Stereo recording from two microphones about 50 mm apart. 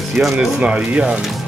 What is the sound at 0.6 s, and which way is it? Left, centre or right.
Speech, right.